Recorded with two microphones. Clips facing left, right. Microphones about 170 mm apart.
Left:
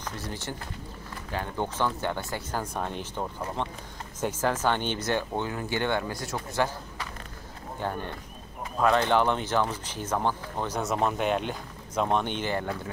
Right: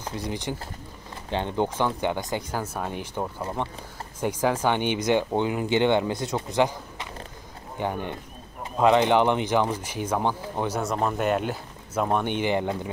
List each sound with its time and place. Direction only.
0.0 s speech: 15° right (ahead or behind)
1.8 s speech: 15° right (ahead or behind)
10.8 s speech: centre (ahead or behind); by 12.9 s 20° right (ahead or behind)